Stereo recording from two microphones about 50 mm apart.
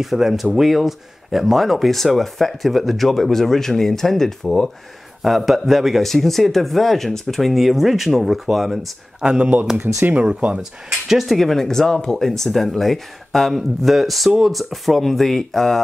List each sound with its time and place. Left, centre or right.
0.0 s speech: centre
5.2 s speech: centre
9.2 s speech: centre
9.8 s speech: right
10.1 s speech: centre
10.6 s speech: centre